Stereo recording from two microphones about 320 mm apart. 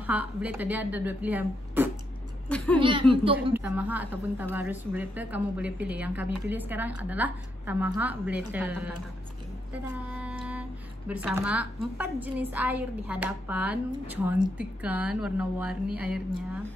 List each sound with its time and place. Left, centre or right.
0.0 s a woman's voice: centre
2.8 s speech: centre
3.5 s a woman's voice: centre
9.9 s a woman's voice: centre